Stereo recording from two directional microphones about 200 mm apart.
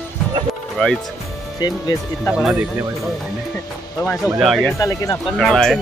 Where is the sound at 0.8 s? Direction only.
5° left (ahead or behind).